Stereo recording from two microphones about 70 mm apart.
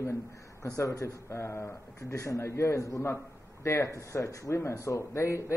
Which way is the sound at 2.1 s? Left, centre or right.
Left.